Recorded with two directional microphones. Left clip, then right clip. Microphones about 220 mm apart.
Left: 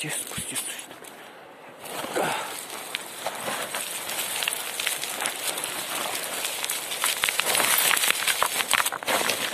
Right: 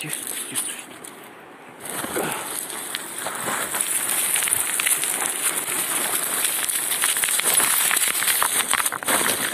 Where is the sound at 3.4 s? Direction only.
10° left (ahead or behind).